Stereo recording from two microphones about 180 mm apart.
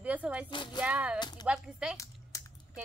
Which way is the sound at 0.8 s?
5° right (ahead or behind).